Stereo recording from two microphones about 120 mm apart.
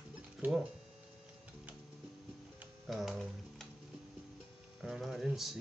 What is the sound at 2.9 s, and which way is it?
Speech, centre (ahead or behind).